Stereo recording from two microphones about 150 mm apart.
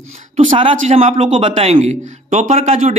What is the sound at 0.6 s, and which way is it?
A man's voice, 40° right (ahead or behind).